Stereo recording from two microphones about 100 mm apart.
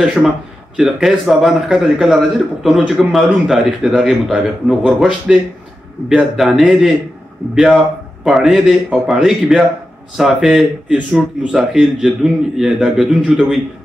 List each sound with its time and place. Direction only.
0.0 s a man's voice: 10° right (ahead or behind)